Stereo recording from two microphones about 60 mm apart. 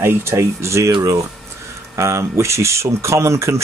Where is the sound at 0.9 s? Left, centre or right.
Right.